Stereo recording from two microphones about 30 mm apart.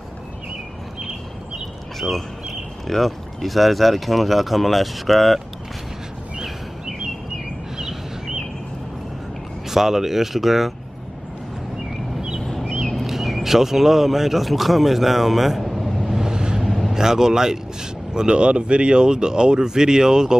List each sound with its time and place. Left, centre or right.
2.0 s speech: centre
9.7 s speech: centre
12.4 s a sound: centre
13.0 s speech: centre
16.2 s vehicle: right
16.9 s speech: centre
18.1 s speech: right